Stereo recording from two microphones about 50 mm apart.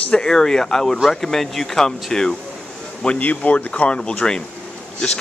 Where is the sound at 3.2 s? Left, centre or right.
Left.